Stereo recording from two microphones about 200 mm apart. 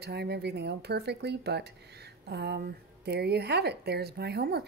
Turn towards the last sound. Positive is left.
turn(degrees=-55)  # may be behind; listen again after turning